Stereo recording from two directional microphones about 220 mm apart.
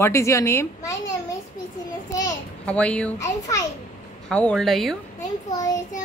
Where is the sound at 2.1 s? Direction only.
15° left (ahead or behind).